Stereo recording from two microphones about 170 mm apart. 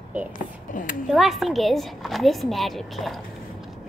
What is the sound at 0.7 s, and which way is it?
Speech, 50° left (ahead or behind).